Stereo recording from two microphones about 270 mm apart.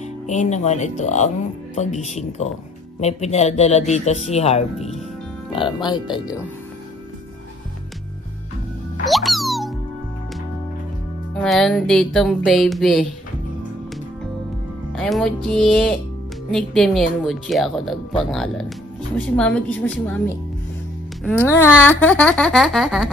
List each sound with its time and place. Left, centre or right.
0.0 s speech: left
9.0 s music: centre
11.4 s speech: centre
14.9 s speech: centre